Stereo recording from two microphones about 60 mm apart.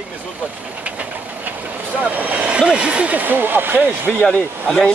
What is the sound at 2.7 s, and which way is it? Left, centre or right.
Speech, centre.